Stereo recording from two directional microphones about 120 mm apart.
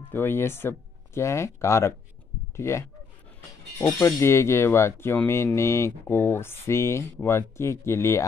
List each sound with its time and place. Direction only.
0.1 s speech: 20° left (ahead or behind)
3.8 s speech: 20° left (ahead or behind)